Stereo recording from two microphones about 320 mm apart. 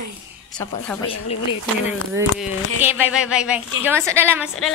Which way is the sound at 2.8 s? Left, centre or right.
Centre.